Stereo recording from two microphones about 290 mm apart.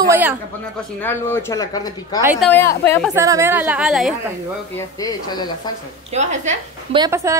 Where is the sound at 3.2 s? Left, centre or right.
Centre.